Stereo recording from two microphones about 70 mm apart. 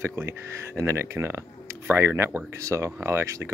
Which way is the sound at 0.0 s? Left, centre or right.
Right.